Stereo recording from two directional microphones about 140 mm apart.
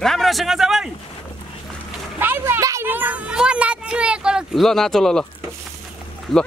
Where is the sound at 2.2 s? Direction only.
15° right (ahead or behind); by 5.2 s 5° left (ahead or behind).